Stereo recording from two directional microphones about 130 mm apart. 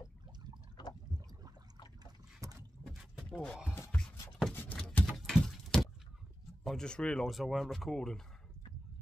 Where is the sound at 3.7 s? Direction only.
15° left (ahead or behind).